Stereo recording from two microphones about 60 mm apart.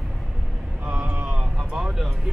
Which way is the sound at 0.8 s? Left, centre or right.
Right.